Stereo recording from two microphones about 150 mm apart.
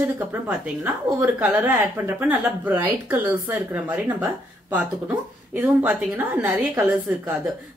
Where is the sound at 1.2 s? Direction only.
10° right (ahead or behind).